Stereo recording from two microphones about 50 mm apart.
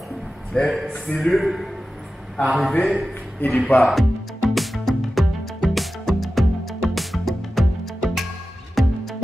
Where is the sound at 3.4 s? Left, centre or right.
Left.